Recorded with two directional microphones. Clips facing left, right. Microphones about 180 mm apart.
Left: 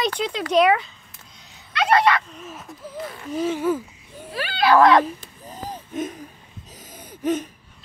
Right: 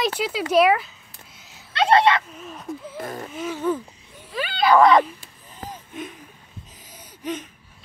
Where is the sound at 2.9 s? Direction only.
45° right (ahead or behind).